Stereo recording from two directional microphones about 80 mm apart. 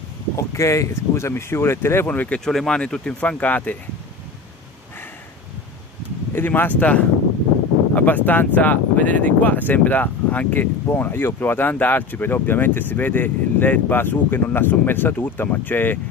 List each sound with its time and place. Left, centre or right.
0.4 s speech: left
2.0 s speech: centre
6.3 s speech: left